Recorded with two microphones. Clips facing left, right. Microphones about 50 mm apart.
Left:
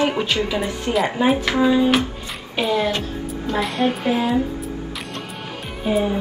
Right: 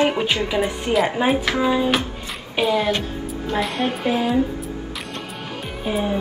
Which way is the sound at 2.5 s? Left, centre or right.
Centre.